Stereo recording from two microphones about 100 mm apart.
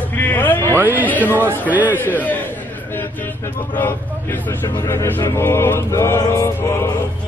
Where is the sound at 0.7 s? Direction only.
20° right (ahead or behind).